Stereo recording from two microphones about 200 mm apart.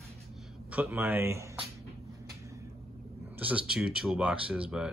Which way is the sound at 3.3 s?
5° right (ahead or behind).